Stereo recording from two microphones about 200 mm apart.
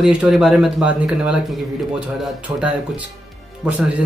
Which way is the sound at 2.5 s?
15° right (ahead or behind).